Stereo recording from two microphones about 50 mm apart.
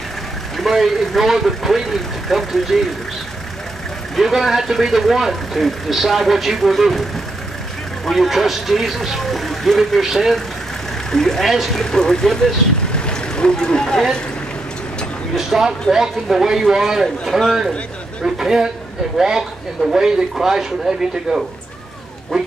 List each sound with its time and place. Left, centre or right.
0.6 s speech: centre
4.2 s speech: centre
11.1 s speech: centre
11.7 s speech: centre
12.9 s boat: centre
15.3 s speech: centre
17.2 s speech: centre
18.2 s speech: centre